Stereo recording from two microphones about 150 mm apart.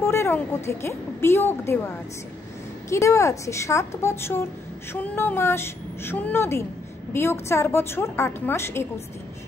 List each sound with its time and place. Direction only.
0.0 s a woman's voice: 15° left (ahead or behind)
2.9 s a woman's voice: 20° left (ahead or behind)